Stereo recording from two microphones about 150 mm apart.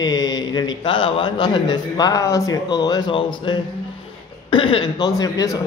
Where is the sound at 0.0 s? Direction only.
25° left (ahead or behind).